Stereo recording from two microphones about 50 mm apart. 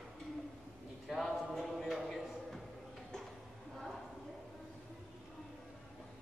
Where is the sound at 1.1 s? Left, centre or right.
Centre.